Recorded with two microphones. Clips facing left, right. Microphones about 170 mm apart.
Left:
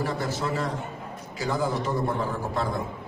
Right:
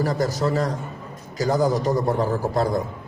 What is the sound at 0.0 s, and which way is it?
A man's voice, 40° right (ahead or behind).